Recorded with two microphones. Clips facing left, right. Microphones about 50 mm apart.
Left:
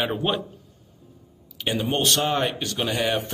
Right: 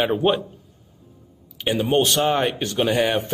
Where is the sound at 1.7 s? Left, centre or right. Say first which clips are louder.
Right 4 dB; centre.